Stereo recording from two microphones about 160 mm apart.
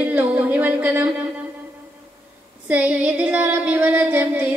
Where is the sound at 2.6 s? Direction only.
10° right (ahead or behind).